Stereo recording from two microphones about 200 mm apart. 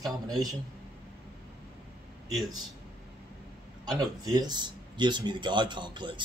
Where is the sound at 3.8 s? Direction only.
20° right (ahead or behind).